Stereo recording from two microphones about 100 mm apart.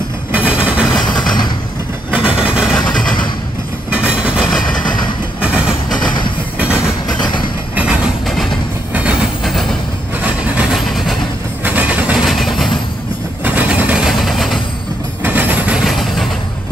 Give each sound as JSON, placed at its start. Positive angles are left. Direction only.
{"t": 0.3, "sound": "a sound", "side_deg": -10}
{"t": 1.0, "sound": "vehicle", "side_deg": 45}
{"t": 2.1, "sound": "vehicle", "side_deg": -10}
{"t": 2.7, "sound": "vehicle", "side_deg": 5}
{"t": 4.1, "sound": "train", "side_deg": -10}
{"t": 5.9, "sound": "train", "side_deg": 50}
{"t": 7.7, "sound": "train", "side_deg": -10}
{"t": 10.2, "sound": "wood", "side_deg": -10}
{"t": 11.6, "sound": "train", "side_deg": -15}
{"t": 12.4, "sound": "a sound", "side_deg": 0}
{"t": 13.4, "sound": "vehicle", "side_deg": -15}
{"t": 15.2, "sound": "vehicle", "side_deg": -15}
{"t": 15.9, "sound": "a sound", "side_deg": 0}